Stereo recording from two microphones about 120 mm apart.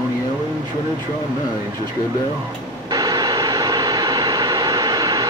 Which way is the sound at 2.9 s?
35° right (ahead or behind).